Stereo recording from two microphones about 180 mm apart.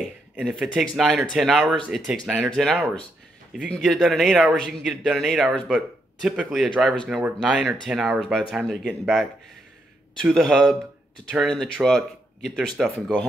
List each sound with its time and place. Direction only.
0.4 s speech: centre (ahead or behind)